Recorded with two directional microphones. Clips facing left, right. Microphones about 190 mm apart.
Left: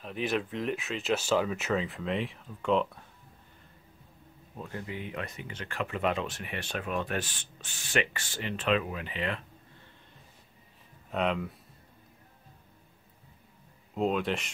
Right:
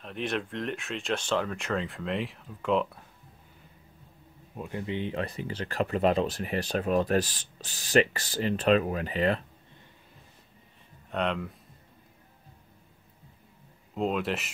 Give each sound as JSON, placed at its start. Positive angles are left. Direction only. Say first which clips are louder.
{"t": 0.0, "sound": "speech", "louder": "left 1 dB", "side_deg": 0}
{"t": 4.6, "sound": "speech", "louder": "right 5 dB", "side_deg": -20}
{"t": 11.1, "sound": "speech", "louder": "even", "side_deg": 0}
{"t": 13.9, "sound": "speech", "louder": "even", "side_deg": 0}